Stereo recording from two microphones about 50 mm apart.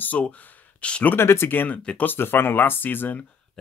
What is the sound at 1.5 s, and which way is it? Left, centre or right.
Speech, left.